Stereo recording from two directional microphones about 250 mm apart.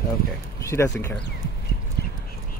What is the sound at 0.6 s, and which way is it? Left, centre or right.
Speech, centre.